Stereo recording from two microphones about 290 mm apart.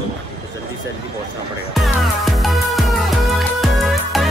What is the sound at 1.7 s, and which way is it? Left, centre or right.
Music, centre.